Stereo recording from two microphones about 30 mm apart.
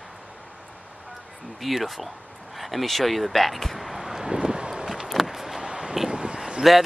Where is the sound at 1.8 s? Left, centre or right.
Centre.